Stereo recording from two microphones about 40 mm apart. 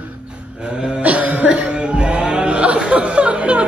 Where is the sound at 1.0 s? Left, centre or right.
Right.